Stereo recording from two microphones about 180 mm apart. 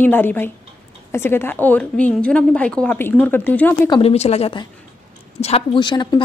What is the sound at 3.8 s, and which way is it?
A woman's voice, 30° left (ahead or behind).